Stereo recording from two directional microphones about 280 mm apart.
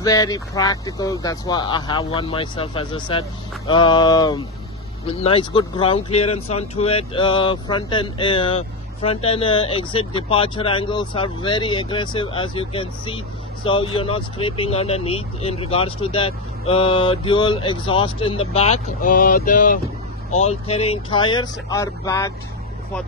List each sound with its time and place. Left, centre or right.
0.0 s speech: centre